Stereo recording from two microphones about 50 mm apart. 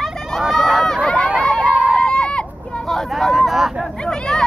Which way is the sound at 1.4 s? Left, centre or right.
Centre.